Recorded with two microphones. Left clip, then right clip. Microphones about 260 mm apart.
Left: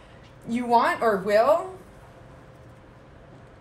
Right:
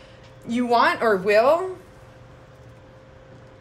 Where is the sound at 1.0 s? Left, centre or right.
Right.